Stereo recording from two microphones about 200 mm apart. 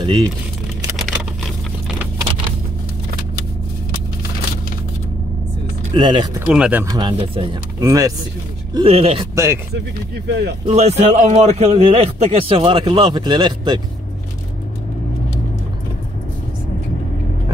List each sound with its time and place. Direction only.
0.0 s speech: 20° right (ahead or behind)
5.9 s a man's voice: 20° right (ahead or behind)
6.4 s speech: 5° right (ahead or behind)
8.7 s a man's voice: 30° right (ahead or behind)
9.3 s speech: 15° right (ahead or behind)
10.1 s speech: 55° right (ahead or behind)
10.7 s a man's voice: 35° right (ahead or behind)